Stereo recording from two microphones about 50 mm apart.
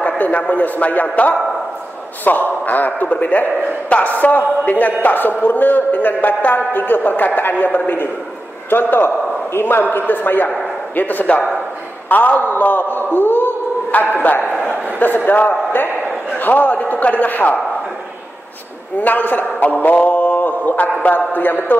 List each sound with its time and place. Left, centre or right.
0.0 s a man's voice: left
14.5 s a sound: left
15.0 s a man's voice: left
18.9 s speech: left